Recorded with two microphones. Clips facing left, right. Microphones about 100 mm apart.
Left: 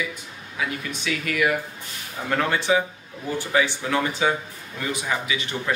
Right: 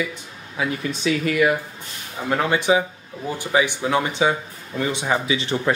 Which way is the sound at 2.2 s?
15° right (ahead or behind).